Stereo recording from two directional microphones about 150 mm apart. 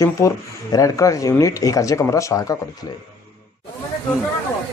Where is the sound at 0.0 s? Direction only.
20° left (ahead or behind).